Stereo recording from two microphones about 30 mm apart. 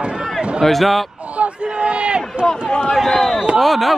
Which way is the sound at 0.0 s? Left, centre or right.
Right.